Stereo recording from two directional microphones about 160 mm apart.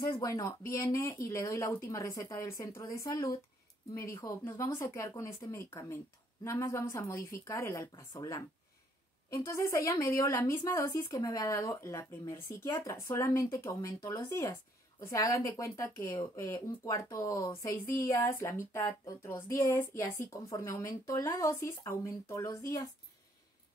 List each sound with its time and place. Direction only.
0.0 s a woman's voice: 20° left (ahead or behind)